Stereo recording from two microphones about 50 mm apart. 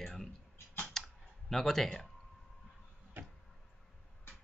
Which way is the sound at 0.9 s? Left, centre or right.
Centre.